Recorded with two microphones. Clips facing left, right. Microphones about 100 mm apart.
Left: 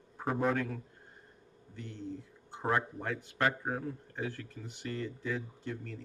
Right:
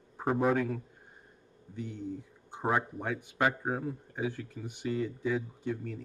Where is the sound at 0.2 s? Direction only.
15° right (ahead or behind).